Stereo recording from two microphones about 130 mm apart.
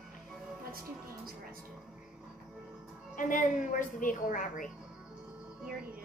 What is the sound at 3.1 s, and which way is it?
A woman's voice, 85° left.